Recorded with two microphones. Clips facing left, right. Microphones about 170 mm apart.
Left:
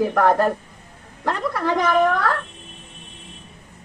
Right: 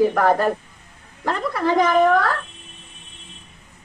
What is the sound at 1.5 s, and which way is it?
Speech, 10° right (ahead or behind).